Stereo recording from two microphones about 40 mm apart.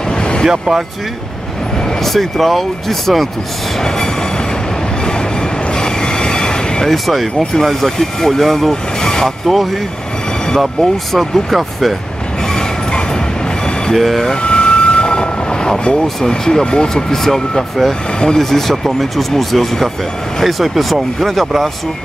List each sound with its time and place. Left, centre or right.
0.1 s a sound: centre
0.5 s speech: centre
1.9 s speech: centre
3.8 s train: centre
6.9 s speech: centre
9.0 s vehicle: centre
10.6 s speech: centre
13.9 s speech: centre
14.3 s vehicle: left
16.3 s speech: centre